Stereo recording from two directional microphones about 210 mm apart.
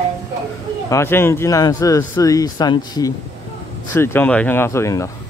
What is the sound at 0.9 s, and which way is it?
Speech, 10° left (ahead or behind).